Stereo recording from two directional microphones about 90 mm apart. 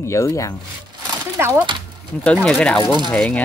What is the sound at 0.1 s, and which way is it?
Speech, 35° left (ahead or behind).